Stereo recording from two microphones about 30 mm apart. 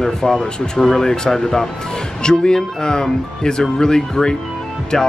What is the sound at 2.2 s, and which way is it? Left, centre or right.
Speech, left.